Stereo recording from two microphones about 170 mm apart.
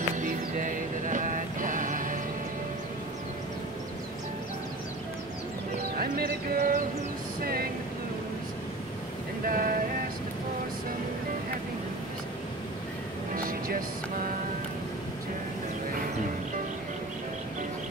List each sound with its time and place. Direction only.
0.2 s music: 50° right (ahead or behind)
5.9 s music: 60° right (ahead or behind)
7.4 s speech: 60° right (ahead or behind)
9.5 s a sound: 55° right (ahead or behind)
13.3 s music: 55° right (ahead or behind)